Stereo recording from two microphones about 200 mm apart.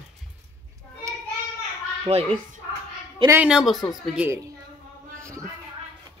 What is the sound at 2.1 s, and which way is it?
Speech, 30° right (ahead or behind).